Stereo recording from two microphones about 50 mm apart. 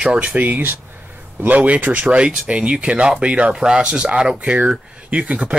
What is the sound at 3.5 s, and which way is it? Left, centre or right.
Speech, centre.